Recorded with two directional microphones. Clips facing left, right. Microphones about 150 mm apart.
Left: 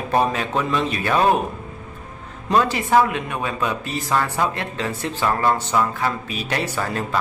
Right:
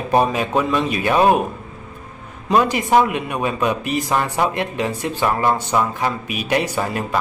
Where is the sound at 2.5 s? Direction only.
15° right (ahead or behind).